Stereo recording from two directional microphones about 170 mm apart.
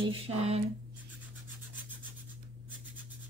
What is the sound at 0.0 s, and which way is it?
Speech, 35° right (ahead or behind).